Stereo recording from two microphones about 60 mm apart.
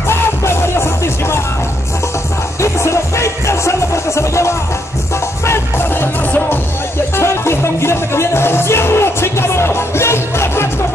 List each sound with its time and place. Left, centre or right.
0.1 s music: left
2.6 s music: left
7.2 s music: left